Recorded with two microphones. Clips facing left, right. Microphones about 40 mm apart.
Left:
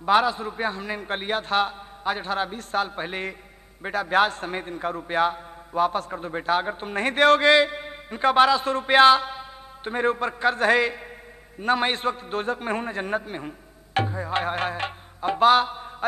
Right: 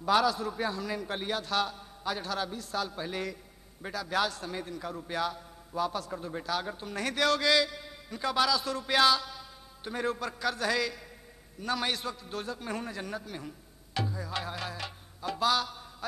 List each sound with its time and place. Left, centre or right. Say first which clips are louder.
0.0 s a man's voice: left 5 dB; left